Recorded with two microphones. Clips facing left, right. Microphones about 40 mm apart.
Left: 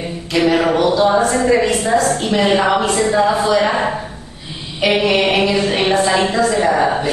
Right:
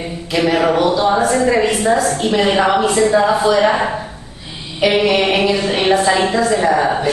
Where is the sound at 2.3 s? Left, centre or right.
Centre.